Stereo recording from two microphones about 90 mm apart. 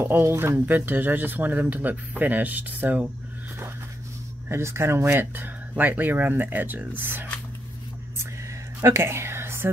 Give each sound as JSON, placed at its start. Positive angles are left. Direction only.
{"t": 0.0, "sound": "speech", "side_deg": -25}
{"t": 4.5, "sound": "speech", "side_deg": -30}
{"t": 8.8, "sound": "whispering", "side_deg": -30}